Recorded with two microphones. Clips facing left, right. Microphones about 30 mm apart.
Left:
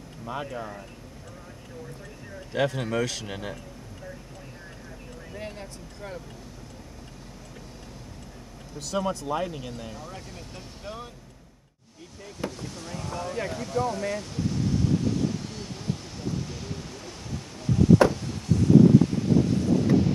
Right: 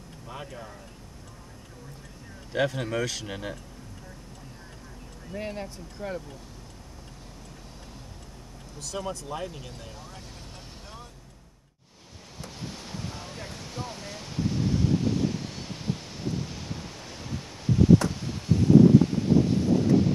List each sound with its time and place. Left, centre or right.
0.3 s speech: centre
2.5 s speech: centre
5.3 s speech: centre
8.7 s speech: centre
12.4 s vehicle: centre
13.4 s a sound: centre